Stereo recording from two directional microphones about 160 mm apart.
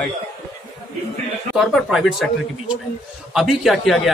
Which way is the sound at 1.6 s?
Centre (ahead or behind).